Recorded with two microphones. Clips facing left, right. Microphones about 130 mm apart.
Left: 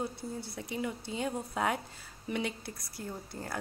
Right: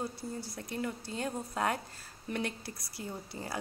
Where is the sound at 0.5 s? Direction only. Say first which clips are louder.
Left 2 dB; 5° left (ahead or behind).